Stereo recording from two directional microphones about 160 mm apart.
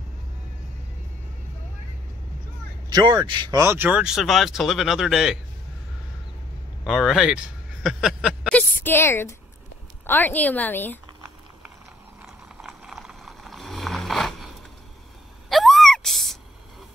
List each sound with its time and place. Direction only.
2.9 s speech: 25° right (ahead or behind)
3.6 s speech: 15° right (ahead or behind)
6.9 s speech: centre (ahead or behind)
8.5 s a woman's voice: 10° left (ahead or behind)
12.6 s vehicle: centre (ahead or behind)
15.5 s a sound: centre (ahead or behind)